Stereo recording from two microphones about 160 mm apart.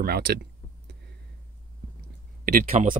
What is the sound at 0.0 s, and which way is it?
Speech, 80° right.